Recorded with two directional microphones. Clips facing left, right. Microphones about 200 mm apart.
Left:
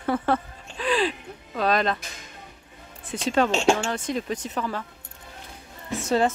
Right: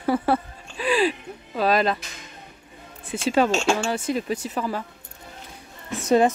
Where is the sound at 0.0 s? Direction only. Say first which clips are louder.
Right 2 dB; 10° right (ahead or behind).